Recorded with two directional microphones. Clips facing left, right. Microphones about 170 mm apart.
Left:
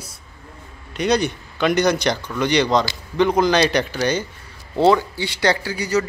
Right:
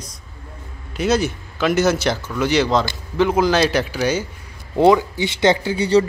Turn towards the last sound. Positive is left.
turn(degrees=-30)  # may be behind; listen again after turning